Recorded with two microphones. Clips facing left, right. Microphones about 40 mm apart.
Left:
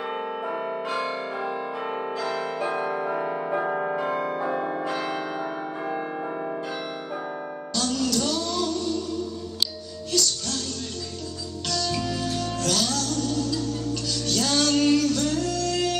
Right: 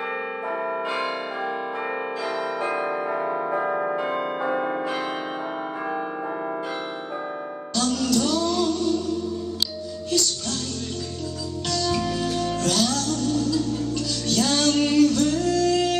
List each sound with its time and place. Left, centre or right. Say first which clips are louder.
7.9 s music: right 3 dB; centre
10.0 s music: right 1 dB; centre
11.9 s music: right 3 dB; centre